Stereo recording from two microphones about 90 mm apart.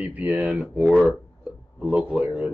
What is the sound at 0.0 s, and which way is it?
Speech, 15° right (ahead or behind).